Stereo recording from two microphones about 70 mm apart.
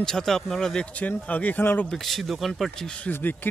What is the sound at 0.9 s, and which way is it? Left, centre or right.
Speech, left.